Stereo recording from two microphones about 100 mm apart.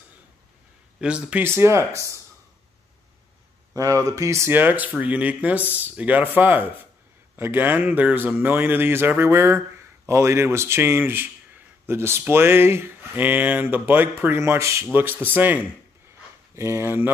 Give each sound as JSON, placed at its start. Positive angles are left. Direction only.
{"t": 1.0, "sound": "speech", "side_deg": -10}
{"t": 1.4, "sound": "speech", "side_deg": -25}
{"t": 3.7, "sound": "speech", "side_deg": -35}